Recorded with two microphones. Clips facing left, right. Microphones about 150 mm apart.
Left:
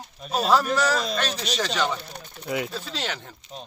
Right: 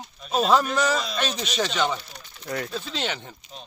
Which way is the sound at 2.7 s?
5° left (ahead or behind).